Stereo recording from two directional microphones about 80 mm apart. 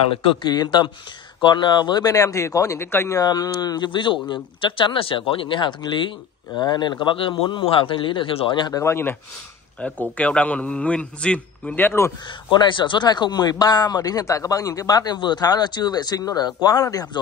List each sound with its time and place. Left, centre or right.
0.5 s speech: left
3.2 s speech: left
8.7 s speech: left
9.8 s a man's voice: centre
12.4 s speech: left
15.1 s speech: left